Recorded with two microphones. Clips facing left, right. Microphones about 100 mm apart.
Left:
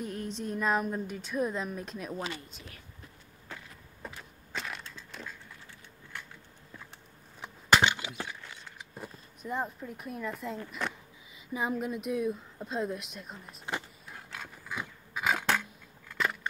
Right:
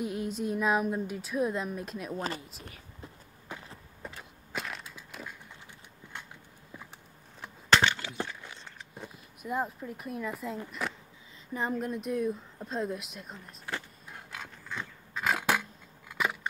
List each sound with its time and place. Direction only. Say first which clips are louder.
0.0 s a woman's voice: right 4 dB; 5° right (ahead or behind)
3.5 s vehicle: right 3 dB; 15° right (ahead or behind)
4.0 s a sound: even; centre (ahead or behind)
4.5 s crushing: right 1 dB; centre (ahead or behind)
4.8 s a sound: even; 10° right (ahead or behind)
7.4 s wood: even; 15° left (ahead or behind)
8.7 s vehicle: left 1 dB; 10° left (ahead or behind)
9.1 s speech: right 2 dB; 5° right (ahead or behind)
10.8 s a sound: even; 5° right (ahead or behind)
11.5 s a woman's voice: even; 5° left (ahead or behind)
14.1 s a sound: even; centre (ahead or behind)
14.8 s dog: even; 5° left (ahead or behind)
16.1 s biting: right 1 dB; 5° right (ahead or behind)